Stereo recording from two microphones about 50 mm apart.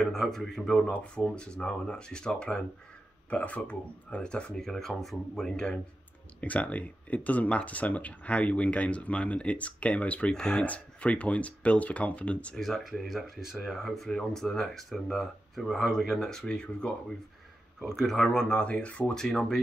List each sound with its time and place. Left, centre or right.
0.0 s speech: centre
0.7 s speech: centre
3.3 s speech: left
4.2 s speech: centre
4.6 s speech: centre
6.4 s speech: left
10.3 s speech: centre
10.6 s speech: left
12.5 s speech: centre
17.8 s speech: centre; by 19.1 s left
19.1 s speech: centre